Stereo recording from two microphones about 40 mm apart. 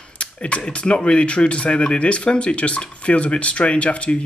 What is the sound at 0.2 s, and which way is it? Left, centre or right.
Speech, left.